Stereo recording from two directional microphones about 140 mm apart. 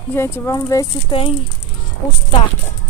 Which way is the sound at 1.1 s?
35° left (ahead or behind).